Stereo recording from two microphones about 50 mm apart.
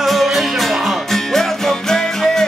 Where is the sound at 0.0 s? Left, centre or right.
Centre.